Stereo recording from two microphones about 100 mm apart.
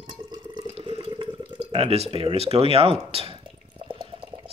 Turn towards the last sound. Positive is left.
turn(degrees=-80)